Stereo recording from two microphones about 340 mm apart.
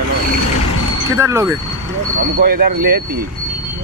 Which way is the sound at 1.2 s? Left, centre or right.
Centre.